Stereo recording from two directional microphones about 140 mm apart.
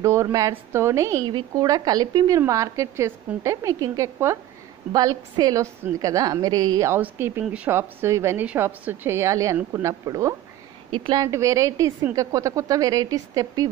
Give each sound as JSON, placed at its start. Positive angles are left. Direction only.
{"t": 0.0, "sound": "a woman's voice", "side_deg": -20}